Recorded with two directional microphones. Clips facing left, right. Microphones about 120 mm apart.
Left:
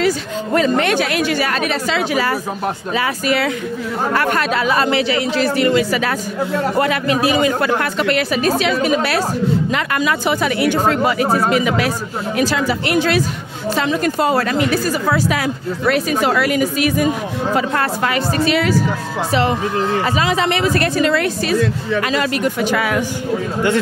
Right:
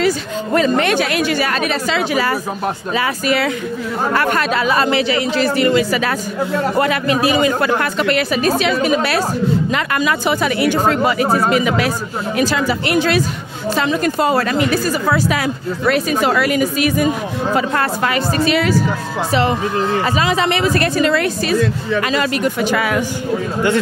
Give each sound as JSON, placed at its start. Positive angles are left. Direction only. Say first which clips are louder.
{"t": 0.0, "sound": "speech", "louder": "right 1 dB", "side_deg": -25}